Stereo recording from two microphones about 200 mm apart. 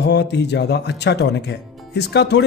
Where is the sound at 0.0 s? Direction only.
60° left (ahead or behind).